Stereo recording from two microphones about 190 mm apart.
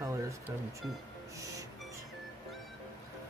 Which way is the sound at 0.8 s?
Centre (ahead or behind).